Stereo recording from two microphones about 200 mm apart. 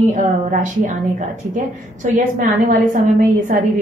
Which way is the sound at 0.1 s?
40° right (ahead or behind).